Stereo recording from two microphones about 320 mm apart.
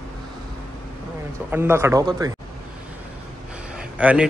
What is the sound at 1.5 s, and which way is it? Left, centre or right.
Speech, centre.